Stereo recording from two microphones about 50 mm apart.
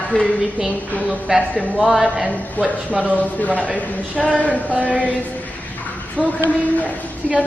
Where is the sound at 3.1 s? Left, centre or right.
Left.